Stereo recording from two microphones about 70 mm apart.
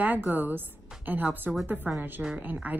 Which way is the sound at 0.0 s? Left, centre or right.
Right.